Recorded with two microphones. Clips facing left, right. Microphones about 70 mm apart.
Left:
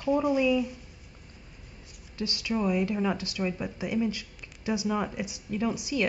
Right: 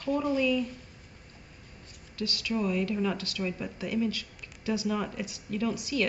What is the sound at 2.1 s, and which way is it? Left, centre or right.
A woman's voice, left.